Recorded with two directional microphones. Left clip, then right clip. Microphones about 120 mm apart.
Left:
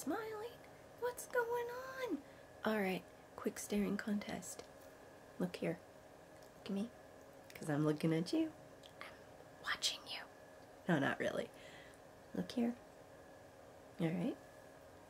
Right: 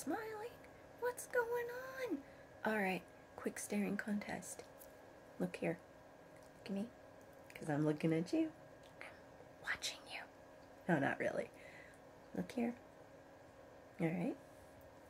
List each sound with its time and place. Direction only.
0.0 s a sound: 15° left (ahead or behind)
2.6 s speech: 20° left (ahead or behind)
10.9 s speech: 25° left (ahead or behind)
13.9 s speech: 25° left (ahead or behind)